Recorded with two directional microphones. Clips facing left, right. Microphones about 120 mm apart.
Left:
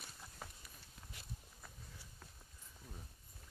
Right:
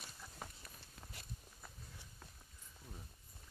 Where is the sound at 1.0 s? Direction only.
30° right (ahead or behind).